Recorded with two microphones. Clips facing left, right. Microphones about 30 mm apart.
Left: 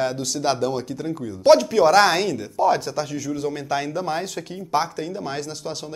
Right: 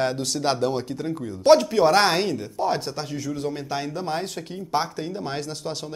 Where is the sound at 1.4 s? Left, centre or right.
Left.